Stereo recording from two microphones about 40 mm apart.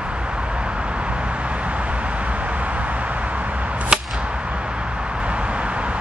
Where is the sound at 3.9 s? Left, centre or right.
Centre.